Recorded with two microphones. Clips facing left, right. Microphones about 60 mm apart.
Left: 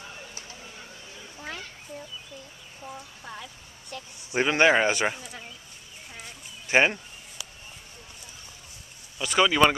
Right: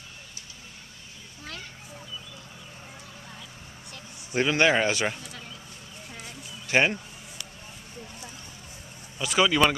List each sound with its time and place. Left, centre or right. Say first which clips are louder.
4.3 s a man's voice: left 1 dB; centre
5.1 s speech: left 1 dB; centre
6.7 s a sound: left 1 dB; centre
9.2 s speech: left 1 dB; centre
9.5 s a man's voice: left 3 dB; centre